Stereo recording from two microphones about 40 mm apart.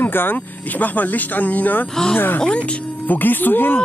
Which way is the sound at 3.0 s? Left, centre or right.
Left.